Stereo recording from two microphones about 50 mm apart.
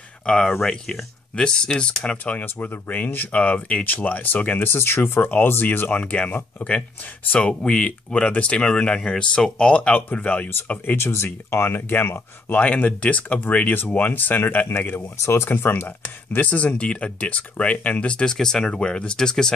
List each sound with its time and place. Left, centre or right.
0.3 s speech: centre
1.3 s speech: centre
2.4 s speech: left
4.7 s speech: left
5.5 s speech: left
7.3 s speech: left
11.0 s speech: left
11.9 s speech: left
12.5 s speech: left
16.3 s speech: left; by 19.5 s centre